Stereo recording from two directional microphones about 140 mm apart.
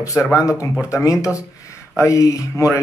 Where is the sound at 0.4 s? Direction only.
25° left (ahead or behind).